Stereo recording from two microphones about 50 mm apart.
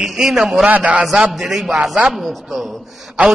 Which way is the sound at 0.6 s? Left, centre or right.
Right.